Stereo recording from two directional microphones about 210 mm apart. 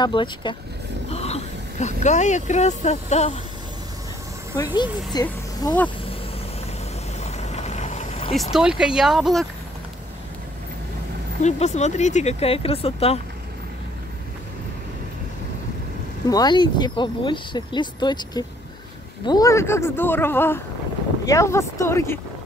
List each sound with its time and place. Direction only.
0.0 s speech: 20° left (ahead or behind)
5.2 s speech: 15° left (ahead or behind)
7.2 s vehicle: 30° left (ahead or behind)
8.4 s speech: centre (ahead or behind)
11.4 s speech: 35° left (ahead or behind)
16.3 s speech: 20° left (ahead or behind)